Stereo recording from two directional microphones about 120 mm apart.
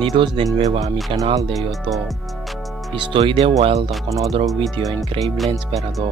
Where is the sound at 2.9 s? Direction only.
45° right (ahead or behind).